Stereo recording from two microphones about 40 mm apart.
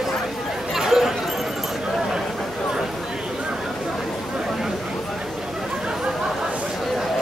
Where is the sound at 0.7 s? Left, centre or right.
Centre.